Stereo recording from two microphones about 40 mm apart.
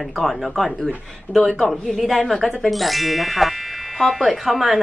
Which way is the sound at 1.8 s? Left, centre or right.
Centre.